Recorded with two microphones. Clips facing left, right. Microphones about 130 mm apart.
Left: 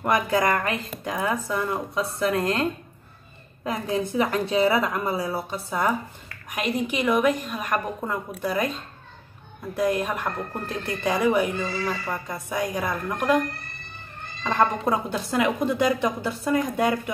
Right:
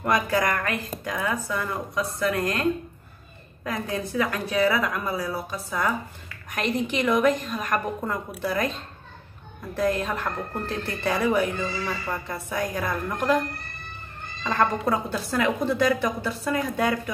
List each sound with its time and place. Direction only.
0.0 s speech: 20° left (ahead or behind)
6.5 s speech: 10° left (ahead or behind)
9.8 s speech: 15° left (ahead or behind)
14.4 s speech: 15° left (ahead or behind)